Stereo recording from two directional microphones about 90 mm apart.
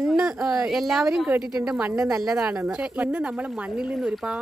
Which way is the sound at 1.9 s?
35° right (ahead or behind).